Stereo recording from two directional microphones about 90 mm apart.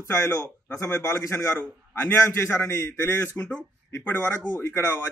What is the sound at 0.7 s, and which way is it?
A man's voice, 30° left (ahead or behind).